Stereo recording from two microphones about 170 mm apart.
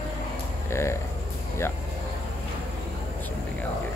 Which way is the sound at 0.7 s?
15° left (ahead or behind).